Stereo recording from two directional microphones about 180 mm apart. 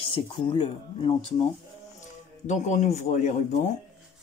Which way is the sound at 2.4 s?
40° left (ahead or behind).